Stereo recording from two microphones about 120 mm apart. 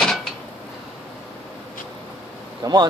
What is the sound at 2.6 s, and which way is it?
Speech, 35° right (ahead or behind).